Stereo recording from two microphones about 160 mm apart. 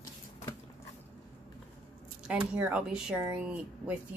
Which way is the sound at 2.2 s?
10° right (ahead or behind).